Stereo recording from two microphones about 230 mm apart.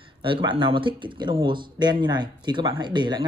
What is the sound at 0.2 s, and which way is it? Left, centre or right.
Speech, right.